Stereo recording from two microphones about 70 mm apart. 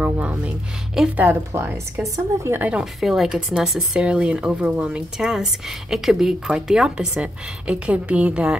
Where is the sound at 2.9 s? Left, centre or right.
Centre.